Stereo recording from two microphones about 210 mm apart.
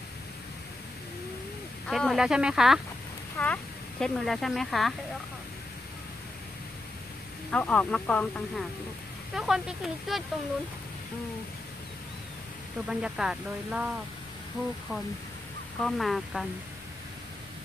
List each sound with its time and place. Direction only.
1.9 s speech: centre (ahead or behind)
7.5 s speech: 5° left (ahead or behind)
12.8 s speech: 5° right (ahead or behind)
15.8 s speech: centre (ahead or behind)